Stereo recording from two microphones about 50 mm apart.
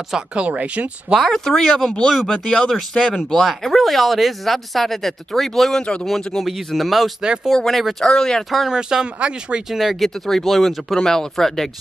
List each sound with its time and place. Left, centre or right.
0.3 s speech: right
1.2 s speech: centre
8.5 s speech: centre
8.7 s speech: centre
9.7 s speech: centre